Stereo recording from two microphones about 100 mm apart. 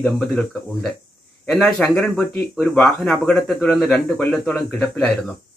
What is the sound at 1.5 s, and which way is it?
Speech, 5° left (ahead or behind).